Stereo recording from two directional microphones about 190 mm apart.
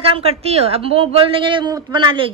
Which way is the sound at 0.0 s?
30° right (ahead or behind).